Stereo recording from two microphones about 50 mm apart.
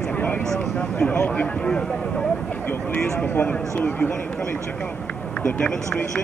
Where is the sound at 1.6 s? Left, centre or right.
Centre.